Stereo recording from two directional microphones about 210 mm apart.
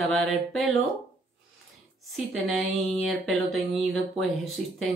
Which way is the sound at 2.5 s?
Centre (ahead or behind).